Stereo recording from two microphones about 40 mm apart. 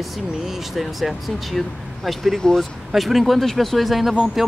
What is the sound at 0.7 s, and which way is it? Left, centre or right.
Speech, centre.